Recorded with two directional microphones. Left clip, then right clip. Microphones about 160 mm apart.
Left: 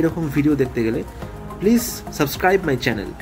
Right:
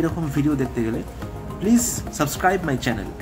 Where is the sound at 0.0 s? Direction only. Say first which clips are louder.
Left 4 dB; 20° left (ahead or behind).